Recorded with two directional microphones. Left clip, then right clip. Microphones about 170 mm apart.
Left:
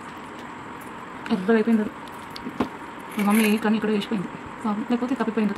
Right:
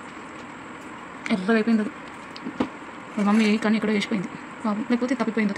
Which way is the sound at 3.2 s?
25° right (ahead or behind).